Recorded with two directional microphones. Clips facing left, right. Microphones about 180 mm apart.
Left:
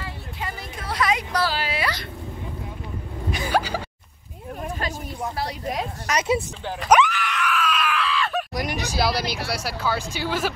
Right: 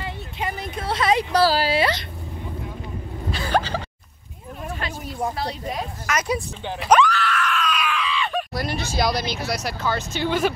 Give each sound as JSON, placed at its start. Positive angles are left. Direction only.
{"t": 0.0, "sound": "a sound", "side_deg": -20}
{"t": 3.3, "sound": "a sound", "side_deg": 15}
{"t": 5.2, "sound": "a woman's voice", "side_deg": -30}
{"t": 6.0, "sound": "speech", "side_deg": 25}
{"t": 7.0, "sound": "screaming", "side_deg": 20}
{"t": 7.5, "sound": "screaming", "side_deg": 5}
{"t": 8.9, "sound": "speech", "side_deg": 5}